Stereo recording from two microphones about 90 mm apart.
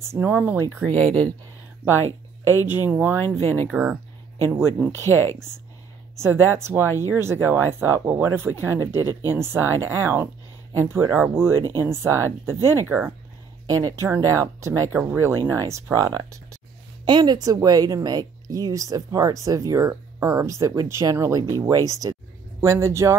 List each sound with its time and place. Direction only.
0.1 s speech: 20° right (ahead or behind)
0.8 s speech: 15° left (ahead or behind)
2.0 s a sound: 30° left (ahead or behind)
2.6 s speech: 20° right (ahead or behind)
3.2 s speech: 25° left (ahead or behind)
3.7 s speech: 20° right (ahead or behind)
5.1 s speech: 25° left (ahead or behind)
6.1 s speech: 30° right (ahead or behind)
13.7 s speech: 40° right (ahead or behind)
17.0 s speech: 55° right (ahead or behind); by 23.1 s 35° right (ahead or behind)